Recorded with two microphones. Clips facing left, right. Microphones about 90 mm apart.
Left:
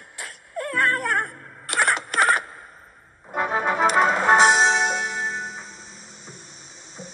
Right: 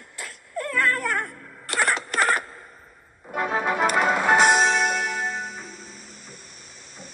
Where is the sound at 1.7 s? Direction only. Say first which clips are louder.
Left 2 dB; 5° left (ahead or behind).